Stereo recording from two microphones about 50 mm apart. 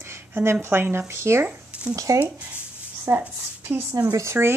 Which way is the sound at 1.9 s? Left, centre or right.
Right.